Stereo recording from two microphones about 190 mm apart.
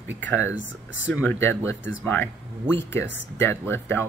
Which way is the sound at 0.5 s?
85° left.